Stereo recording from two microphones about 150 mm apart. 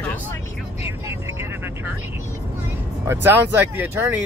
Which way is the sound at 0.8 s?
15° right (ahead or behind).